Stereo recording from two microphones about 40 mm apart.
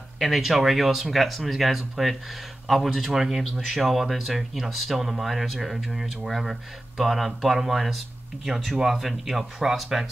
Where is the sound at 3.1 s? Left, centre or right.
Centre.